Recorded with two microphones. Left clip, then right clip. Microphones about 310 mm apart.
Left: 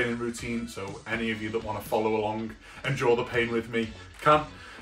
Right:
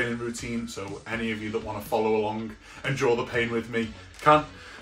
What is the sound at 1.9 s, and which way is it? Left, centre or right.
Speech, centre.